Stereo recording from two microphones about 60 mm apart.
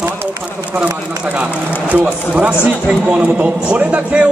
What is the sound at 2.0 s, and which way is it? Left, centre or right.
Speech, centre.